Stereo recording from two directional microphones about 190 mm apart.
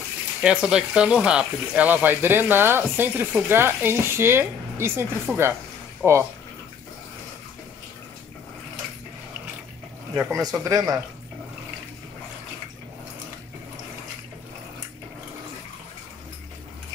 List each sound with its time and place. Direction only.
0.4 s speech: 5° right (ahead or behind)
10.1 s speech: 15° right (ahead or behind)